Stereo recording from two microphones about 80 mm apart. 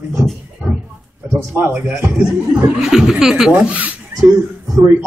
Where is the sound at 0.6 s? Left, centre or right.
Centre.